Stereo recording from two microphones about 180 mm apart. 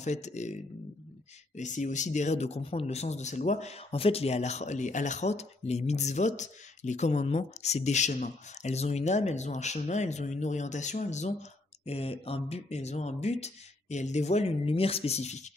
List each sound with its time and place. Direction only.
0.0 s speech: 40° left (ahead or behind)
1.6 s speech: 45° left (ahead or behind)